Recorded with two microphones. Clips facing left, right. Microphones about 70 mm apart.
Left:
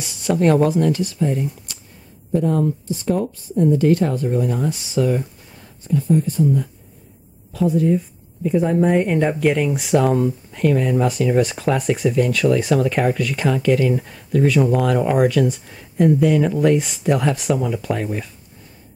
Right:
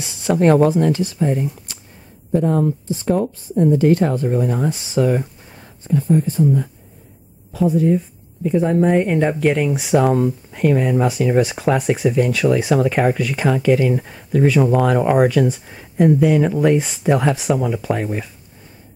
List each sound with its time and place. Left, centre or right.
0.2 s speech: right
7.5 s speech: centre
10.7 s speech: right